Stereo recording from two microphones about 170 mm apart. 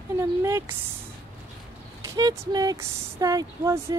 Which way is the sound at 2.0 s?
20° right (ahead or behind).